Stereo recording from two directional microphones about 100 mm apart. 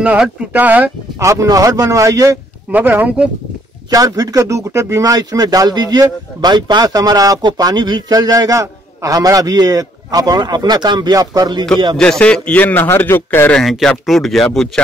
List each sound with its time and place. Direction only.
0.5 s speech: 15° right (ahead or behind)
1.2 s a man's voice: 30° right (ahead or behind)
2.7 s speech: 20° right (ahead or behind)
3.9 s a man's voice: 40° right (ahead or behind)
12.0 s a man's voice: 10° left (ahead or behind)
13.5 s speech: 5° left (ahead or behind)